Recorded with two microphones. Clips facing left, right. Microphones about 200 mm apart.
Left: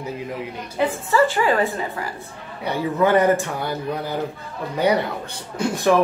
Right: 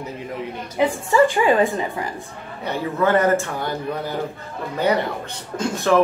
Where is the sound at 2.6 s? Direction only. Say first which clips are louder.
Left 1 dB; 15° left (ahead or behind).